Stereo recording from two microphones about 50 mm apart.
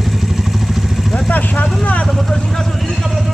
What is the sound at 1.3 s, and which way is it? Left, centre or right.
Vehicle, left.